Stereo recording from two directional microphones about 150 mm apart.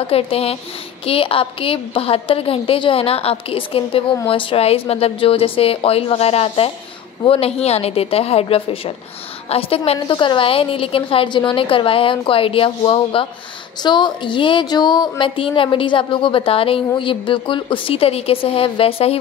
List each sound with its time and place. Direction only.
0.0 s speech: 40° left (ahead or behind)